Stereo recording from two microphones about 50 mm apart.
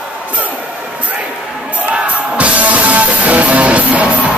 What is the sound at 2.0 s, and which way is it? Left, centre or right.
Music, right.